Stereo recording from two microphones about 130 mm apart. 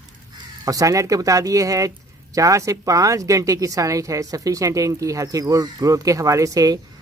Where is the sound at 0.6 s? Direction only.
25° right (ahead or behind).